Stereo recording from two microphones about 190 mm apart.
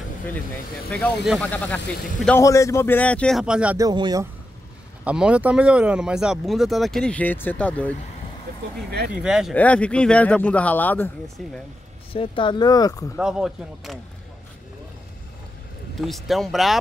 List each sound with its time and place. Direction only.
0.9 s speech: centre (ahead or behind)
3.7 s speech: 20° right (ahead or behind)
5.0 s speech: 5° right (ahead or behind)
9.1 s speech: 5° right (ahead or behind)
12.1 s speech: 25° left (ahead or behind)
13.2 s speech: 5° right (ahead or behind)
16.0 s speech: centre (ahead or behind)